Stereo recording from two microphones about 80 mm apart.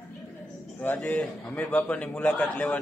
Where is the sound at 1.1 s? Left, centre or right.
Centre.